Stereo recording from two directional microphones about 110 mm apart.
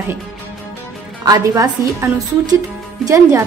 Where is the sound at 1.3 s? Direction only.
30° right (ahead or behind).